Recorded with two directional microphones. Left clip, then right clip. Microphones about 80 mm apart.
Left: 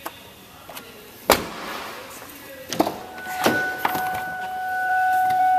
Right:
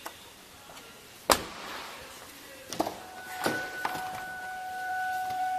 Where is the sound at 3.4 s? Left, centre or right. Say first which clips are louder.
Left 10 dB; centre.